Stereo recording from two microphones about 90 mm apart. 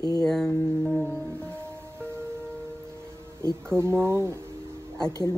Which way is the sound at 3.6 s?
25° right (ahead or behind).